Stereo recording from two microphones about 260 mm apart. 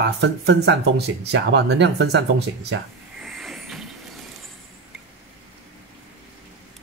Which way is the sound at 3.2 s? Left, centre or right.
Centre.